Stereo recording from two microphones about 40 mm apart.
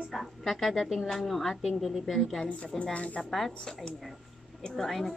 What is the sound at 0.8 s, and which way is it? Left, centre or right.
Speech, centre.